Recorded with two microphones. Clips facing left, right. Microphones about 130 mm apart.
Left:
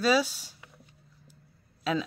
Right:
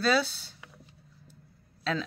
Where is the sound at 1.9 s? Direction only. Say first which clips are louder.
Left 2 dB; 10° left (ahead or behind).